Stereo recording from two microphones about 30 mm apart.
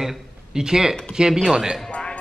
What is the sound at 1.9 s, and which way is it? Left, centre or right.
Clip-clop, left.